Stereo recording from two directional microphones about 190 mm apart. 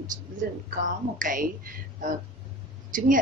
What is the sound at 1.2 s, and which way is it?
Speech, 45° right (ahead or behind).